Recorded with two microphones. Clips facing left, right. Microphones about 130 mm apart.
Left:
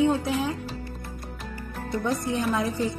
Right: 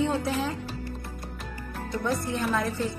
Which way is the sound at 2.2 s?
15° left (ahead or behind).